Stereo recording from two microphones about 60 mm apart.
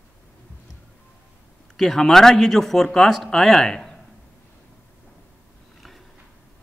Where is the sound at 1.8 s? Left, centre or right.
Centre.